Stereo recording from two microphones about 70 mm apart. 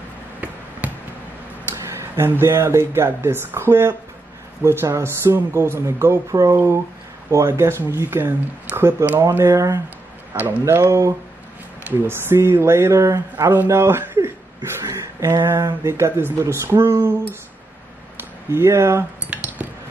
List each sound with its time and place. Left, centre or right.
0.4 s basketball bounce: right
1.8 s speech: right
18.5 s speech: right
19.3 s cutlery: right